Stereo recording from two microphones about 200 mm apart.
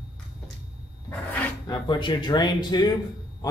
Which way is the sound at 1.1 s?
10° left (ahead or behind).